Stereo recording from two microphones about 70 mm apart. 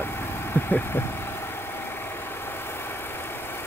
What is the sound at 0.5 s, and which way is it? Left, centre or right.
Speech, left.